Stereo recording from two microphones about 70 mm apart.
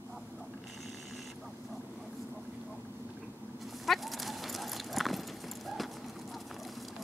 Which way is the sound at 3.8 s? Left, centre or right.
Centre.